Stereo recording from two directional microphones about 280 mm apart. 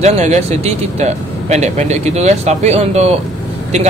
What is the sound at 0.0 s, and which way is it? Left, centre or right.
A man's voice, right.